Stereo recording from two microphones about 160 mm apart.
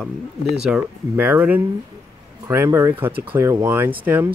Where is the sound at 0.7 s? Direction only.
10° right (ahead or behind).